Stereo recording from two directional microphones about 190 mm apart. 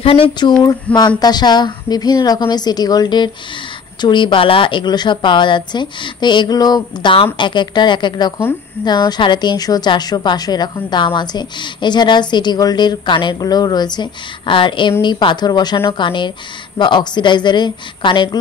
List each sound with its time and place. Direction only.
0.0 s a woman's voice: 30° left (ahead or behind)